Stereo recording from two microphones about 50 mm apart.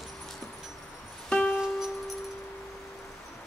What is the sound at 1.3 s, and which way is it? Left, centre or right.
Music, centre.